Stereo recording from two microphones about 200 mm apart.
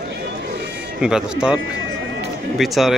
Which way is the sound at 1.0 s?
5° right (ahead or behind).